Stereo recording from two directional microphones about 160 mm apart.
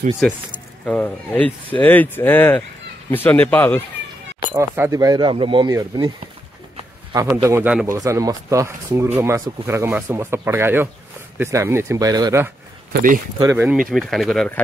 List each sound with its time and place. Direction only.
0.2 s speech: 5° left (ahead or behind)
4.6 s a man's voice: 15° right (ahead or behind)
13.8 s speech: centre (ahead or behind)